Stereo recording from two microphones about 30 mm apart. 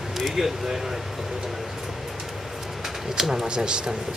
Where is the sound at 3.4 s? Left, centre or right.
Right.